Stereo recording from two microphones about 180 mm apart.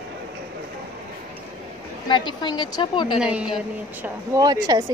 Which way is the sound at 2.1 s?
25° left (ahead or behind).